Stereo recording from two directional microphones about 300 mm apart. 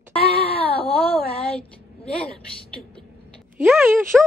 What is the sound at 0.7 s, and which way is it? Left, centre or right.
Baby cry, centre.